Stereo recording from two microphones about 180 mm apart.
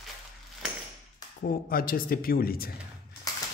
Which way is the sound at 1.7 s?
55° left (ahead or behind).